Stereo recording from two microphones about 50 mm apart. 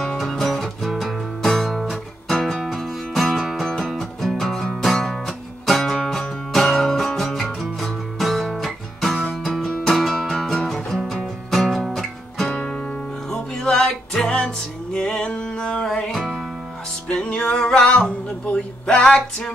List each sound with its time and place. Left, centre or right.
0.0 s music: centre
10.3 s music: centre
12.5 s music: centre
15.8 s music: centre
17.1 s music: centre